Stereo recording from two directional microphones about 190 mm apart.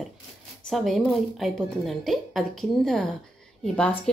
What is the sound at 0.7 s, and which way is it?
A woman's voice, centre (ahead or behind).